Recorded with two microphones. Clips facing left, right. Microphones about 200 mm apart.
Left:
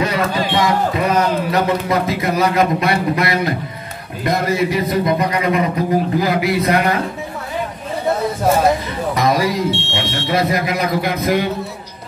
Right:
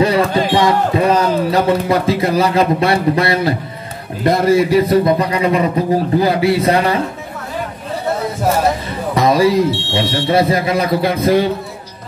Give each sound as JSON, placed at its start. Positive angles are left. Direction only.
{"t": 0.0, "sound": "a man's voice", "side_deg": -30}
{"t": 9.1, "sound": "a sound", "side_deg": -30}
{"t": 9.7, "sound": "speech", "side_deg": 25}
{"t": 9.9, "sound": "speech", "side_deg": -30}